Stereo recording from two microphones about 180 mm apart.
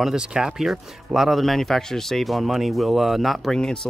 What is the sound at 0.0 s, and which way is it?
Speech, 5° right (ahead or behind).